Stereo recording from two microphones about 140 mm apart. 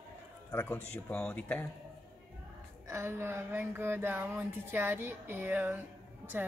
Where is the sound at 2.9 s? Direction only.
15° right (ahead or behind).